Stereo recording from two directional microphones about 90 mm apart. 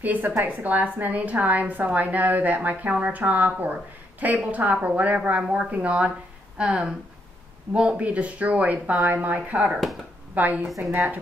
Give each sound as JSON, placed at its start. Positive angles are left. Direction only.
{"t": 0.0, "sound": "a woman's voice", "side_deg": -20}